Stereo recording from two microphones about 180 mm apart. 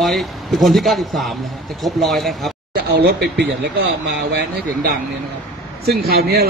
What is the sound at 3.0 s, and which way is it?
Speech, 65° right (ahead or behind).